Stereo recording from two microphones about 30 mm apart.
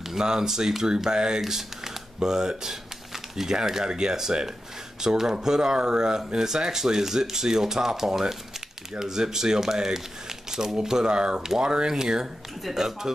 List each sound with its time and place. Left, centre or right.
0.1 s speech: right